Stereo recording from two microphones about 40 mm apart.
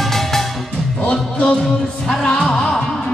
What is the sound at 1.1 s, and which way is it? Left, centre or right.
Music, left.